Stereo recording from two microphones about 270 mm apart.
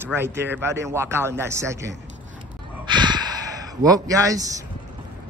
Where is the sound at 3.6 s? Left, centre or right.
Centre.